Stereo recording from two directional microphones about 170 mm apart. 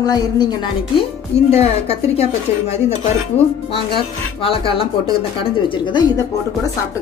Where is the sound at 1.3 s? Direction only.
40° left (ahead or behind).